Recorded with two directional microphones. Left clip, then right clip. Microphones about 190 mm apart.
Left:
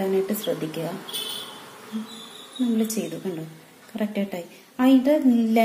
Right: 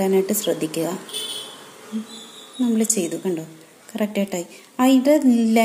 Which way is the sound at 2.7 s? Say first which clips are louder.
Right 5 dB; 30° right (ahead or behind).